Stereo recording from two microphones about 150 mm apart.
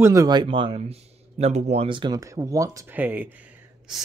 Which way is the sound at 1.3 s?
50° right (ahead or behind).